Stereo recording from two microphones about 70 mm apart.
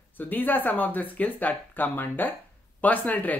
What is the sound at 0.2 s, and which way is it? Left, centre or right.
Speech, left.